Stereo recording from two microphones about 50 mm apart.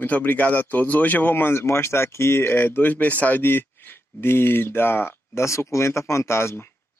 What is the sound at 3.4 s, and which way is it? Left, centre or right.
Speech, left.